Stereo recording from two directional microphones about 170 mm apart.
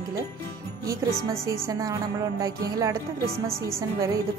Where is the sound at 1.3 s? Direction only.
15° right (ahead or behind).